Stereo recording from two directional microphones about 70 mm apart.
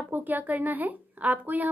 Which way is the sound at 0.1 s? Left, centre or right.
Right.